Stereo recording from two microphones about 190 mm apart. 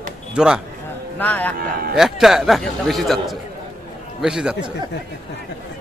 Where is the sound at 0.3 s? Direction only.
5° right (ahead or behind).